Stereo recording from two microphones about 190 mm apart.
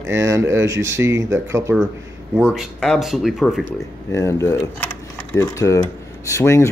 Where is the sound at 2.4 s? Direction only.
Centre (ahead or behind).